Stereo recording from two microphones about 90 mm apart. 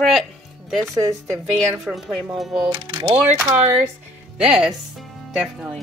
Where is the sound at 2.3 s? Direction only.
5° right (ahead or behind).